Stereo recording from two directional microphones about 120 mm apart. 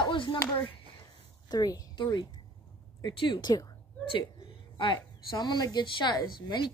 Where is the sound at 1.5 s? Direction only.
30° left (ahead or behind).